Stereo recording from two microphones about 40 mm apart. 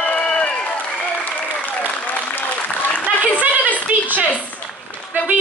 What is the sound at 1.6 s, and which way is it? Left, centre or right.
Applause, left.